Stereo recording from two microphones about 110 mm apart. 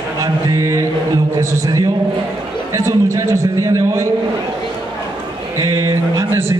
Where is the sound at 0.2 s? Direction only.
25° right (ahead or behind).